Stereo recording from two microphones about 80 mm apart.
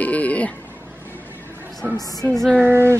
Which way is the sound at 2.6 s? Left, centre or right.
Right.